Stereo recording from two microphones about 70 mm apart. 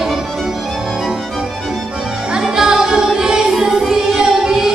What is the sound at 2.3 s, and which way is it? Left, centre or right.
Music, centre.